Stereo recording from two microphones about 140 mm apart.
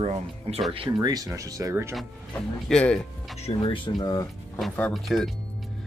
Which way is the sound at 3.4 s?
50° left (ahead or behind).